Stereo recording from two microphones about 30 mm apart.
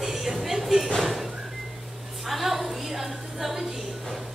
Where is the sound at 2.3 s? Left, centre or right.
Centre.